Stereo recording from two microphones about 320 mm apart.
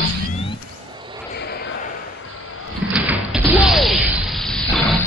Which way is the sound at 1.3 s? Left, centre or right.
Left.